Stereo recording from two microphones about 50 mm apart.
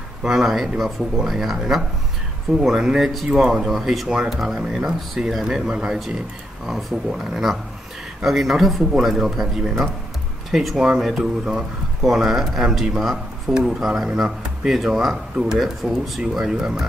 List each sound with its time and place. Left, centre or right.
0.2 s speech: centre
5.7 s speech: centre
6.6 s speech: centre